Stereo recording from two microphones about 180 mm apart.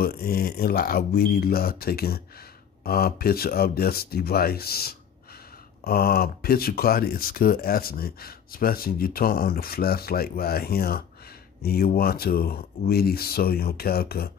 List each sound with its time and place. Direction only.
0.0 s speech: 55° left (ahead or behind)